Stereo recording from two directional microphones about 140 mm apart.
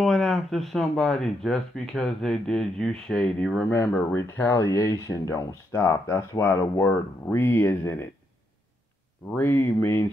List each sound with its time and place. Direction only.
0.0 s speech: centre (ahead or behind)
4.0 s speech: 15° left (ahead or behind)
9.3 s speech: 15° left (ahead or behind)